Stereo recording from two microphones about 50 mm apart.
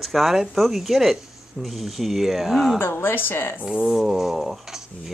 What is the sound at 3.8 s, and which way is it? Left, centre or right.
Speech, centre.